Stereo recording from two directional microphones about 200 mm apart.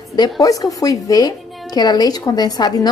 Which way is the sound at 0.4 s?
15° left (ahead or behind).